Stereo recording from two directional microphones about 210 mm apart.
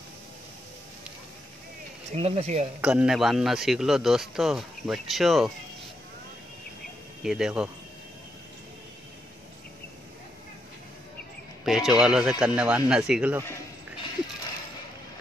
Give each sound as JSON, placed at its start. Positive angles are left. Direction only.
{"t": 2.1, "sound": "speech", "side_deg": -30}
{"t": 2.8, "sound": "a man's voice", "side_deg": -5}
{"t": 7.2, "sound": "a man's voice", "side_deg": -5}
{"t": 11.6, "sound": "a man's voice", "side_deg": 0}